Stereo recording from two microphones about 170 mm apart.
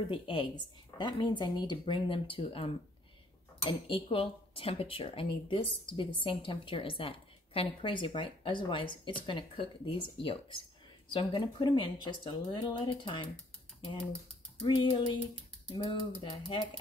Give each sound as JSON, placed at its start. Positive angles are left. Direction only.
{"t": 0.0, "sound": "speech", "side_deg": 30}
{"t": 3.8, "sound": "speech", "side_deg": 30}
{"t": 13.7, "sound": "mechanisms", "side_deg": 30}
{"t": 14.6, "sound": "speech", "side_deg": 30}